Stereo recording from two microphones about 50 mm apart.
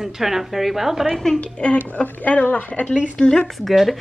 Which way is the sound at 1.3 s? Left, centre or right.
Left.